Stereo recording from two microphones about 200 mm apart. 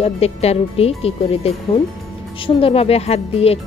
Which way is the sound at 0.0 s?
30° left (ahead or behind).